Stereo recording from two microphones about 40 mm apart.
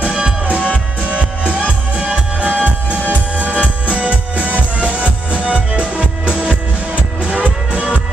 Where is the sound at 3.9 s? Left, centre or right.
Right.